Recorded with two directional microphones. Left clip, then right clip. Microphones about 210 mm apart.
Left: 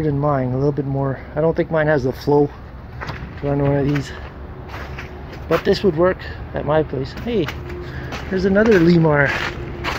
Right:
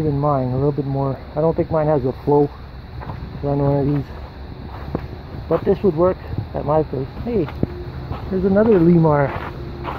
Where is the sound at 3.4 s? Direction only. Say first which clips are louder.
Even; 15° left (ahead or behind).